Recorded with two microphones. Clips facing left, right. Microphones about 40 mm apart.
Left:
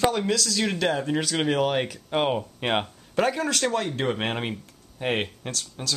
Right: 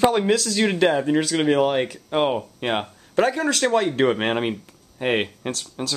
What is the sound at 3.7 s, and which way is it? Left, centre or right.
Speech, right.